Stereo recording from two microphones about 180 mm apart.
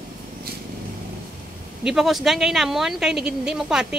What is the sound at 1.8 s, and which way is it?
Speech, centre (ahead or behind).